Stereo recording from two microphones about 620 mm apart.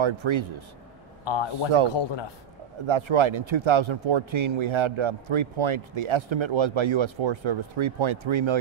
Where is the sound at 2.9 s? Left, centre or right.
Right.